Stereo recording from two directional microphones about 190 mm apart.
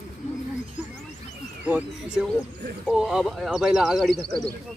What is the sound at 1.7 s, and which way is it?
Speech, 5° right (ahead or behind).